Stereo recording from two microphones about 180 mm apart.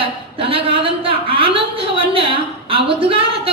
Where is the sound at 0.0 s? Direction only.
30° right (ahead or behind).